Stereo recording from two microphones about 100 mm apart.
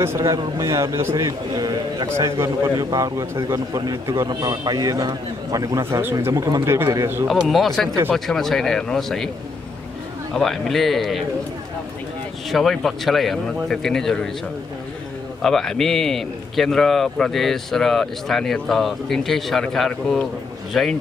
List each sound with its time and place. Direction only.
0.3 s a man's voice: 30° right (ahead or behind)
5.9 s a man's voice: 25° right (ahead or behind)
7.2 s a man's voice: centre (ahead or behind)
10.3 s a man's voice: centre (ahead or behind)
12.4 s a man's voice: centre (ahead or behind)
15.4 s a man's voice: 5° left (ahead or behind)